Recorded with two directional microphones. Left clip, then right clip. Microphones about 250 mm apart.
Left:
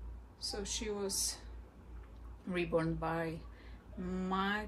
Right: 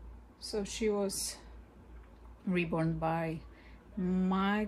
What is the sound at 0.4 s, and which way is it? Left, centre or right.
Speech, right.